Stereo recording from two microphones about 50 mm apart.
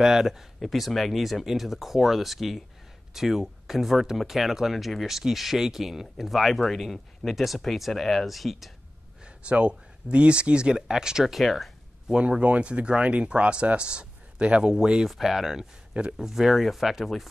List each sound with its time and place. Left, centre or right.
0.0 s speech: centre
9.2 s speech: right
11.3 s speech: centre
12.1 s speech: right; by 15.6 s centre
16.0 s speech: centre
16.3 s speech: centre